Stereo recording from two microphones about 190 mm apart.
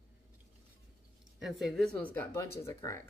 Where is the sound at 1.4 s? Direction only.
Centre (ahead or behind); by 3.0 s 15° left (ahead or behind).